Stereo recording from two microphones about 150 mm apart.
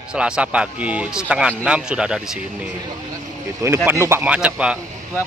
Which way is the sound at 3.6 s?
15° right (ahead or behind).